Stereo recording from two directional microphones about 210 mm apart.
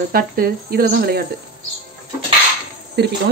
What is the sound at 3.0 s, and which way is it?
Speech, 50° right (ahead or behind).